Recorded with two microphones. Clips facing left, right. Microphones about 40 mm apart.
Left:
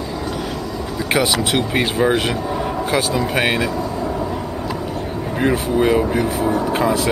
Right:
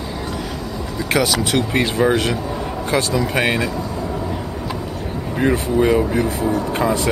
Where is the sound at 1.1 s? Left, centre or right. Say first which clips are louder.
Even; centre.